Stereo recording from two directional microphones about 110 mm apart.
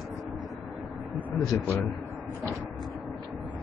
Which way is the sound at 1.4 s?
30° left (ahead or behind).